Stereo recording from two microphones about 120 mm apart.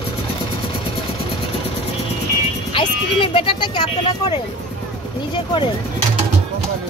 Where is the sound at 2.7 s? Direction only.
45° left (ahead or behind).